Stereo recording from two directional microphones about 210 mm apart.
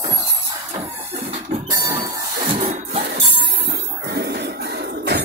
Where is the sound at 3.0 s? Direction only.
55° right (ahead or behind).